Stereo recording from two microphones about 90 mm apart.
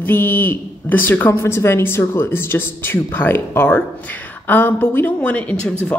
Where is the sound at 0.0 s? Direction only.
20° left (ahead or behind).